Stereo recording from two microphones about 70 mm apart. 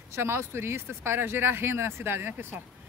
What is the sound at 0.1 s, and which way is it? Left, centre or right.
Speech, right.